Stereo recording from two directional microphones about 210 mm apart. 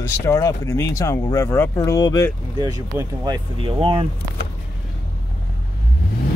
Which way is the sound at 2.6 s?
15° right (ahead or behind).